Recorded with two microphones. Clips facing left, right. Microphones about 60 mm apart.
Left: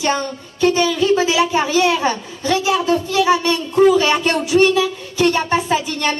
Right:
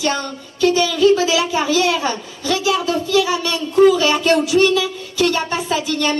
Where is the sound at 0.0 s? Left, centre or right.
Left.